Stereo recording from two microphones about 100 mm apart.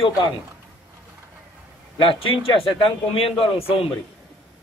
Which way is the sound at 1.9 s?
60° left (ahead or behind).